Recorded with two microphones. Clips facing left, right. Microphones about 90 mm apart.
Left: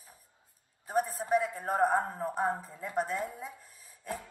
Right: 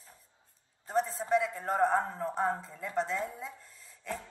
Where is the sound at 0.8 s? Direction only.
10° left (ahead or behind).